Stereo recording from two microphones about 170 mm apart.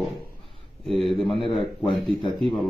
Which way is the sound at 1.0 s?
Centre (ahead or behind).